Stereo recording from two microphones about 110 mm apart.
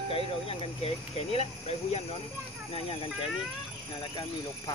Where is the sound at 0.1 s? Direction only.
60° left (ahead or behind).